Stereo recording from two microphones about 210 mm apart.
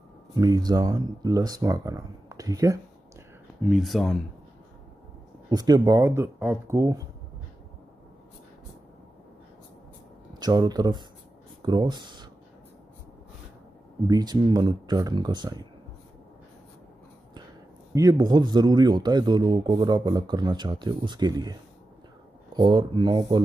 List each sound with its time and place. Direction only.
0.3 s speech: 20° right (ahead or behind)
3.6 s speech: centre (ahead or behind)
5.5 s speech: 20° right (ahead or behind)
10.4 s speech: 20° right (ahead or behind)
14.0 s speech: 20° right (ahead or behind)
17.9 s speech: 20° right (ahead or behind)